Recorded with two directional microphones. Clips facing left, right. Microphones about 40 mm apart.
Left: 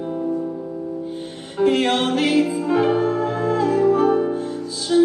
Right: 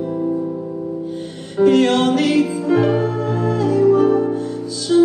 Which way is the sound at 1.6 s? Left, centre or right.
Left.